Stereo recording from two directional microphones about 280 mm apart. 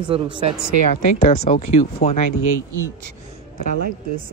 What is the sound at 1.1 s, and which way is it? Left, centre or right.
Speech, left.